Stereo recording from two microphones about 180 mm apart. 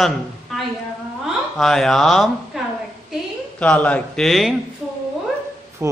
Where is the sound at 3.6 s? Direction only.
5° left (ahead or behind).